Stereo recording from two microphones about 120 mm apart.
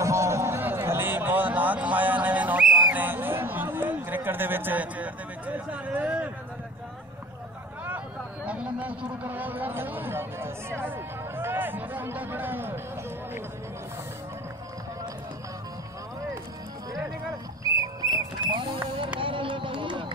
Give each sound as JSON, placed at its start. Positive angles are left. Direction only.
{"t": 0.0, "sound": "a sound", "side_deg": -25}
{"t": 8.5, "sound": "speech", "side_deg": -10}
{"t": 17.6, "sound": "rodents", "side_deg": -25}
{"t": 18.4, "sound": "rodents", "side_deg": -45}
{"t": 19.1, "sound": "run", "side_deg": -45}